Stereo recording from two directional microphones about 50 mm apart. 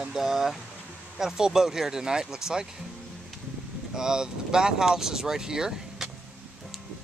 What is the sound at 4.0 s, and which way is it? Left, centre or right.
Speech, centre.